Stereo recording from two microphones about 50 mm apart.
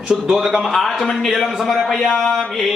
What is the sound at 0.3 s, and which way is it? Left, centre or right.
Speech, centre.